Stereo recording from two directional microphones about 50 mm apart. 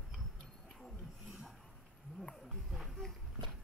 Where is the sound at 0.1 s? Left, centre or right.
Centre.